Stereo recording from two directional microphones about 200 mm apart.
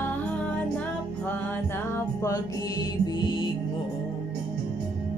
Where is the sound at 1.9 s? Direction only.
15° left (ahead or behind).